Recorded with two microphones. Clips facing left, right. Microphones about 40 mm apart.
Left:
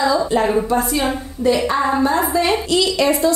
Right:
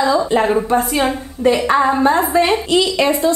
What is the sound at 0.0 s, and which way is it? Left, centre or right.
A woman's voice, right.